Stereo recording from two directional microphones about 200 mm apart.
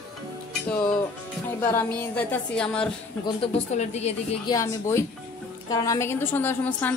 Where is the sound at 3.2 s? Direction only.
30° left (ahead or behind).